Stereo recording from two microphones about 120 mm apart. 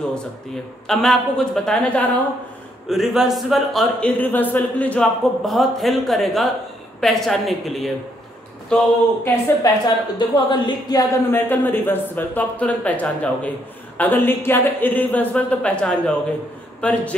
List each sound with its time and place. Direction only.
0.8 s speech: 5° left (ahead or behind)
2.9 s speech: centre (ahead or behind)
4.0 s speech: 15° left (ahead or behind)
5.5 s speech: centre (ahead or behind)
9.8 s speech: 40° left (ahead or behind)
11.2 s speech: 15° left (ahead or behind)